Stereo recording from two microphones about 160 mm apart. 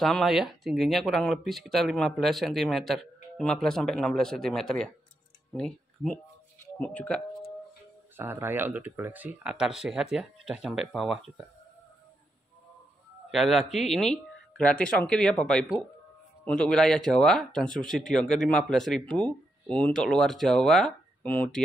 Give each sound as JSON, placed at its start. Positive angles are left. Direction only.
{"t": 0.0, "sound": "speech", "side_deg": 0}
{"t": 8.2, "sound": "speech", "side_deg": -15}
{"t": 13.3, "sound": "speech", "side_deg": 0}